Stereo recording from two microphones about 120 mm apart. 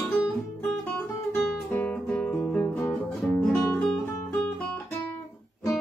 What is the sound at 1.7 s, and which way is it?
Music, 15° left (ahead or behind).